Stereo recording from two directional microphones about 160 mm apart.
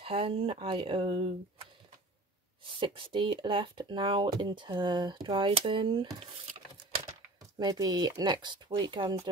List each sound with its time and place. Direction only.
0.0 s speech: 35° right (ahead or behind)
2.6 s speech: 30° right (ahead or behind)
7.5 s speech: 25° right (ahead or behind)